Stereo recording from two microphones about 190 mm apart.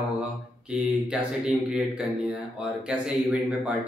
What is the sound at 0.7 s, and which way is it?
A man's voice, 5° right (ahead or behind).